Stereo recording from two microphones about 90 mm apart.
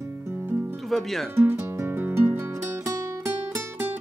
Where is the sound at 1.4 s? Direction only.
25° right (ahead or behind).